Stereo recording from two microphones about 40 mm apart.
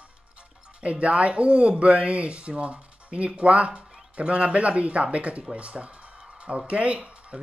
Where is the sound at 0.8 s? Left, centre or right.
Right.